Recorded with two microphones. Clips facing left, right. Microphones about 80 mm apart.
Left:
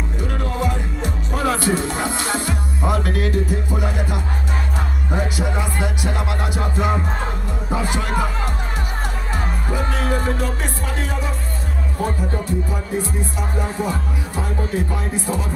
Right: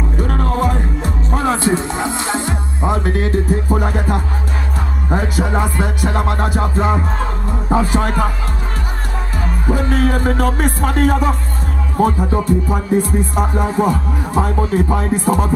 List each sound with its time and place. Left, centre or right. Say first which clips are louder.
0.2 s music: right 6 dB; right
9.7 s music: right 7 dB; right
12.6 s music: right 8 dB; right